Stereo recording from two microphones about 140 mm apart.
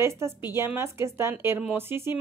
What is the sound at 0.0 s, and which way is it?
A woman's voice, 20° right (ahead or behind).